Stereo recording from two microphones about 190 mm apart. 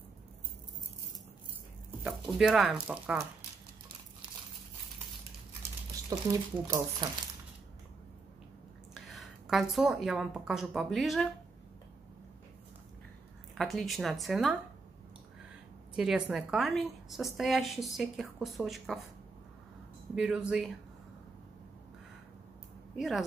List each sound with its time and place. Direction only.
2.0 s a woman's voice: 5° right (ahead or behind)
6.0 s speech: 20° right (ahead or behind)
8.9 s a woman's voice: centre (ahead or behind)
13.6 s a woman's voice: centre (ahead or behind)
16.0 s a woman's voice: 5° right (ahead or behind)
20.2 s a woman's voice: 5° right (ahead or behind)
22.9 s a woman's voice: centre (ahead or behind)